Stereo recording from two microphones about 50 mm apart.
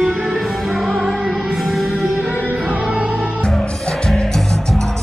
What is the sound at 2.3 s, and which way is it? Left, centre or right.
Music, right.